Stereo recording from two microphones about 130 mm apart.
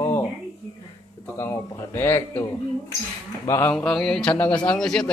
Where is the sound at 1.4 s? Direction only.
20° left (ahead or behind).